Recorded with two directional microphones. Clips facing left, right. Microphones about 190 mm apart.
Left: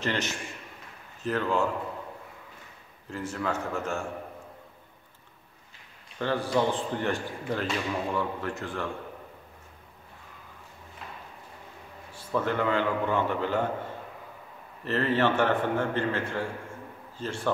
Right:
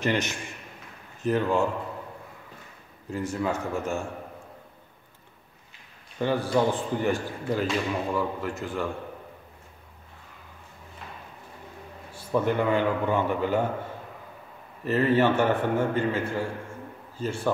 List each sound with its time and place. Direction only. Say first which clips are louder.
0.0 s speech: right 4 dB; 15° right (ahead or behind)
3.1 s speech: right 3 dB; 15° right (ahead or behind)
6.1 s speech: right 2 dB; 10° right (ahead or behind)
12.3 s speech: right 3 dB; 15° right (ahead or behind)
14.9 s speech: right 4 dB; 10° right (ahead or behind)